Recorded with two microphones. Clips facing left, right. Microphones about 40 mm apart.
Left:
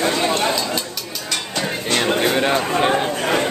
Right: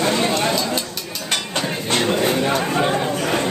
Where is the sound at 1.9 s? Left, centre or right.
Left.